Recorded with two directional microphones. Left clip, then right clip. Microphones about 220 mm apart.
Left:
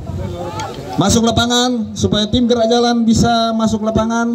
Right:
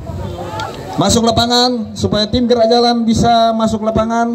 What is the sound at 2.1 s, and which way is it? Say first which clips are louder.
Speech: right 2 dB; 80° left.